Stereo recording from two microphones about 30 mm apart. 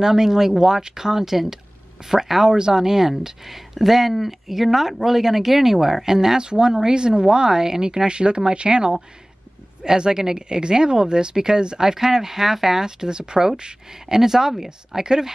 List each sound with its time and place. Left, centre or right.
0.0 s speech: centre
2.4 s speech: right
15.0 s speech: right